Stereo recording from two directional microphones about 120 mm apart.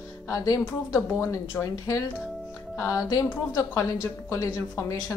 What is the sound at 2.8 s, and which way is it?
A woman's voice, 30° left (ahead or behind).